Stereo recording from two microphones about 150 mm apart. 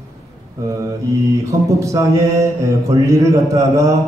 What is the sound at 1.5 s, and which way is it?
Mantra, 20° right (ahead or behind).